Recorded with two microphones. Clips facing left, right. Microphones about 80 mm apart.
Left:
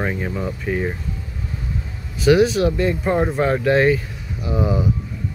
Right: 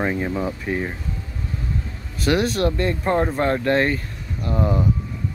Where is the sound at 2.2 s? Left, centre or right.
Centre.